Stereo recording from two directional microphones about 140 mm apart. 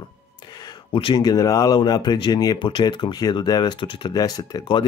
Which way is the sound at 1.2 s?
25° left (ahead or behind).